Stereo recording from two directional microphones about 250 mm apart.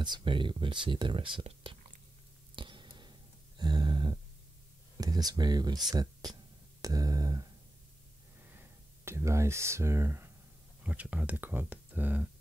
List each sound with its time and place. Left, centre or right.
0.0 s speech: centre
2.5 s a sound: centre
4.9 s speech: centre
8.5 s speech: centre